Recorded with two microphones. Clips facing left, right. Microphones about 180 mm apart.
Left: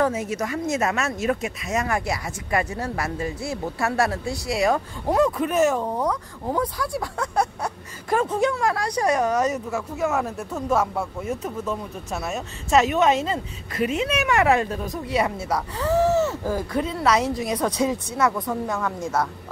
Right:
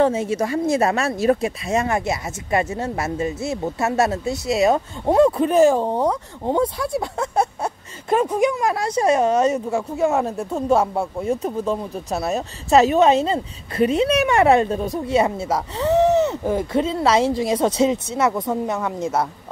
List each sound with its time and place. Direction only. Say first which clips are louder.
0.0 s speech: right 5 dB; 30° right (ahead or behind)